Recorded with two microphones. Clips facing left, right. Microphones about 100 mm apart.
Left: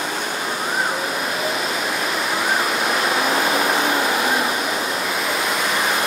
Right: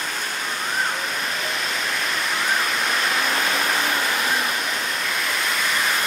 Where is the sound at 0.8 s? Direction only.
10° left (ahead or behind).